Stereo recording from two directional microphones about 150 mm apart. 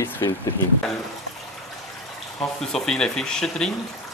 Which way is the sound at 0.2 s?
25° left (ahead or behind).